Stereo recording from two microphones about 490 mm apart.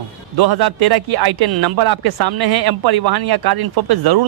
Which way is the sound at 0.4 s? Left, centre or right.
Right.